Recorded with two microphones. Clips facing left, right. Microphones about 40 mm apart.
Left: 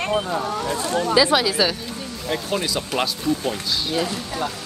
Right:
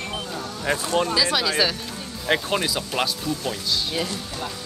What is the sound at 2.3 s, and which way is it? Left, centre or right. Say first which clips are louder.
Speech: right 4 dB; right.